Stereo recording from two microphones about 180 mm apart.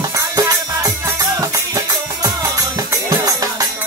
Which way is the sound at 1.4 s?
20° right (ahead or behind).